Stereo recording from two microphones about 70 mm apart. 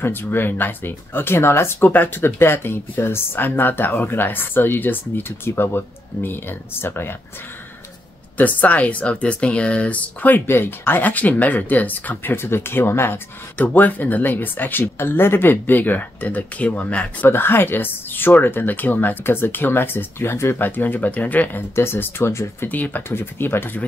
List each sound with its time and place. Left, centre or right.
0.0 s speech: left
8.4 s speech: left
17.3 s speech: left
21.7 s speech: left
22.7 s speech: left